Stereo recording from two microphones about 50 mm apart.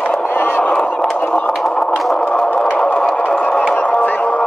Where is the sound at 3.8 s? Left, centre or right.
Left.